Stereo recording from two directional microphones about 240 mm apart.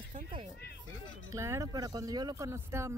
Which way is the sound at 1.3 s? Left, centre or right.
Centre.